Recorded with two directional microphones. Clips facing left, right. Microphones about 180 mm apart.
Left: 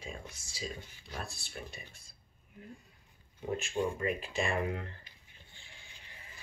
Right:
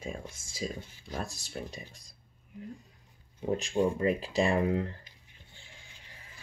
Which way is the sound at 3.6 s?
35° right (ahead or behind).